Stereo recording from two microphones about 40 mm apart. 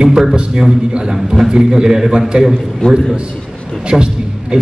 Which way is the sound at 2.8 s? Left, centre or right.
Left.